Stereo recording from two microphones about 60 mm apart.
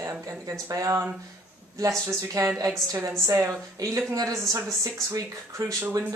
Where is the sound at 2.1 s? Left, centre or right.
Right.